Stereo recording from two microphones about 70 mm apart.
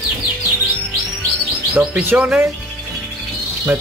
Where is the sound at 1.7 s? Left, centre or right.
Right.